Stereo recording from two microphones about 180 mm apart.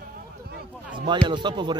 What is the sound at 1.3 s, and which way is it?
Speech, 25° right (ahead or behind).